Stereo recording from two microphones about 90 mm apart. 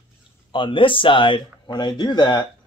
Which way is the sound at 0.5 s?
70° left (ahead or behind).